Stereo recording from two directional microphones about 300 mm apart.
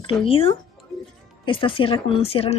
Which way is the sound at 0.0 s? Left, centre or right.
Centre.